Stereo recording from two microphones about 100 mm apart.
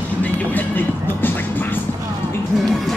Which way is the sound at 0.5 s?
20° left (ahead or behind).